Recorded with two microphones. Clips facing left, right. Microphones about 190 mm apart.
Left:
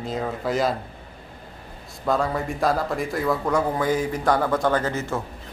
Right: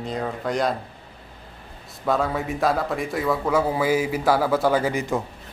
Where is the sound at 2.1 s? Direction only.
Centre (ahead or behind).